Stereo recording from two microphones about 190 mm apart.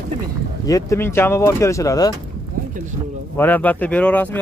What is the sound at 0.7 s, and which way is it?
Speech, 15° left (ahead or behind).